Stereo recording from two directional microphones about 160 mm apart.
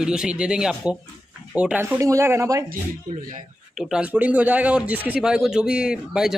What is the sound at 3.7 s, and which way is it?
A man's voice, 5° right (ahead or behind).